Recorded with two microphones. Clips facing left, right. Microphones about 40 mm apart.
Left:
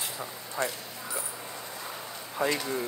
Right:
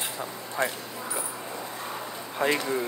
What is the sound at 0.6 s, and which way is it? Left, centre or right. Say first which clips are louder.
Speech: right 3 dB; right.